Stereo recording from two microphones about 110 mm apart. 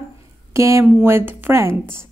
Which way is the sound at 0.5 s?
25° right (ahead or behind).